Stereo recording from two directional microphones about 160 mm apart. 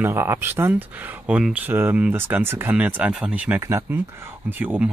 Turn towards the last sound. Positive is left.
turn(degrees=-10)  # may be behind; listen again after turning